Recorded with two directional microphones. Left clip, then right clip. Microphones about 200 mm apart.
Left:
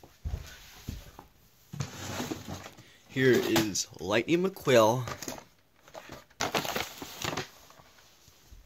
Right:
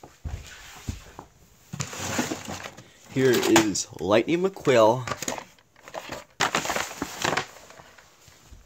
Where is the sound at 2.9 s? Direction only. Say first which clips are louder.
Right 3 dB; 5° right (ahead or behind).